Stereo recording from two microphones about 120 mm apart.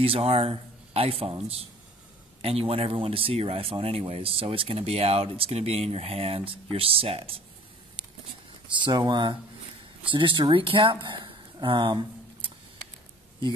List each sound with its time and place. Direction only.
0.0 s speech: 55° right (ahead or behind)
8.7 s speech: 40° right (ahead or behind)